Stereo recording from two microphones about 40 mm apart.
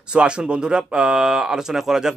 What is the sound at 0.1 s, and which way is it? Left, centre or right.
Speech, right.